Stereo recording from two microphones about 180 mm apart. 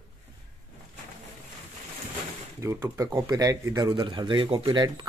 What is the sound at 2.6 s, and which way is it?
Speech, 15° right (ahead or behind).